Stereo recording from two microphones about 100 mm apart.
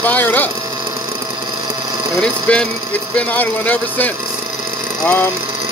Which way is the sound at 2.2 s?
10° left (ahead or behind).